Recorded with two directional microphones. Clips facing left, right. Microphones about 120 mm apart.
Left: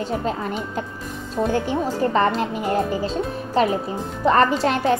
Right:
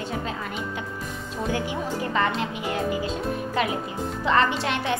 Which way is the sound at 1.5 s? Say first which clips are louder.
Left 4 dB; 45° left (ahead or behind).